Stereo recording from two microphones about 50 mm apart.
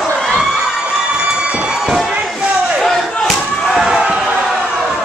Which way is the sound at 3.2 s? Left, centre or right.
Centre.